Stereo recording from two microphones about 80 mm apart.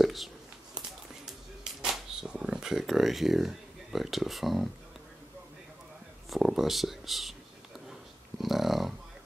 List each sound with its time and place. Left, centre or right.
0.0 s a sound: centre
6.3 s speech: centre
8.4 s dog: centre